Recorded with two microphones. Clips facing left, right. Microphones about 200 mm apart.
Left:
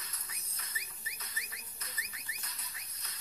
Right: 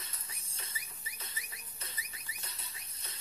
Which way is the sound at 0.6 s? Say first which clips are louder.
Right 2 dB; 30° right (ahead or behind).